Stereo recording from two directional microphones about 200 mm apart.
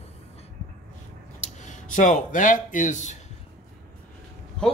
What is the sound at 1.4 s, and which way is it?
Speech, 40° left (ahead or behind).